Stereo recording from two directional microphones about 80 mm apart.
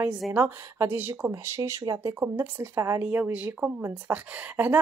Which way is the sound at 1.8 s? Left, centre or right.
Right.